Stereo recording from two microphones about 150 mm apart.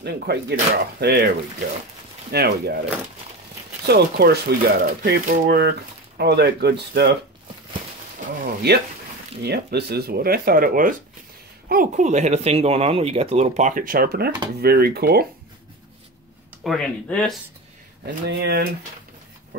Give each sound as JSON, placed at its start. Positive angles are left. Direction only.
{"t": 0.0, "sound": "speech", "side_deg": -90}
{"t": 2.3, "sound": "speech", "side_deg": -90}
{"t": 3.8, "sound": "speech", "side_deg": -90}
{"t": 8.6, "sound": "speech", "side_deg": -90}
{"t": 16.6, "sound": "speech", "side_deg": 5}
{"t": 18.0, "sound": "speech", "side_deg": -90}